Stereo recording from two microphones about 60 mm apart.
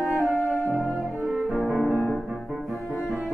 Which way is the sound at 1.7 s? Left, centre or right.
Left.